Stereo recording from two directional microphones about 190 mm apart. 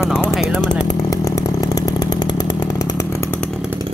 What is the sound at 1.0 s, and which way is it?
Chainsaw, 20° left (ahead or behind).